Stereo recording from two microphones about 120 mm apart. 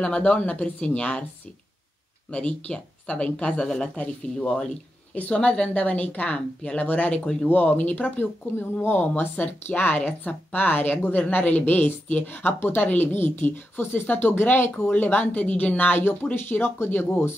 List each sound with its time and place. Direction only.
0.0 s speech: 10° left (ahead or behind)
2.3 s speech: 10° left (ahead or behind)